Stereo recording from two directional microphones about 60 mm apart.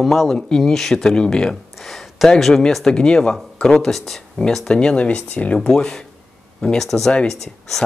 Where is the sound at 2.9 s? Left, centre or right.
Centre.